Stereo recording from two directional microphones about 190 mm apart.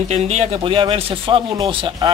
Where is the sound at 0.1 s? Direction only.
35° right (ahead or behind).